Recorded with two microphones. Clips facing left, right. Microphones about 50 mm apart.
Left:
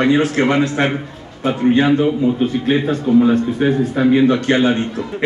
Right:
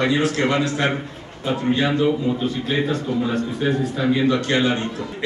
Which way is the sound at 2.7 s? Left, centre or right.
Left.